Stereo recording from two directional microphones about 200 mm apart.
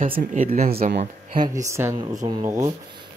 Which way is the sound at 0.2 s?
45° right (ahead or behind).